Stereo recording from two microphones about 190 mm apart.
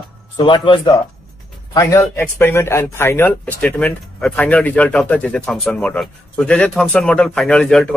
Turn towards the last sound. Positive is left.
turn(degrees=5)  # may be behind; listen again after turning